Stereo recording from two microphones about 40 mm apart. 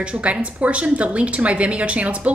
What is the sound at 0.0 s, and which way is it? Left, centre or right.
A woman's voice, right.